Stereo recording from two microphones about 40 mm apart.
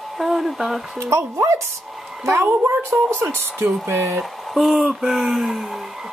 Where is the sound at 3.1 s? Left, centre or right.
Right.